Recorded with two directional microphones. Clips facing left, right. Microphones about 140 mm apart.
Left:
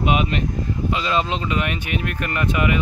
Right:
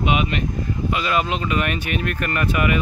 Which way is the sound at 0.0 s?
40° left (ahead or behind).